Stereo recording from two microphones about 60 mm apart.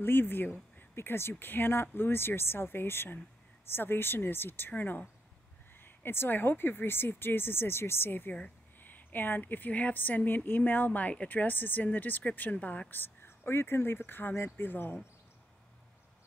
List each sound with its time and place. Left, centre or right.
0.0 s a woman's voice: left
12.9 s speech: left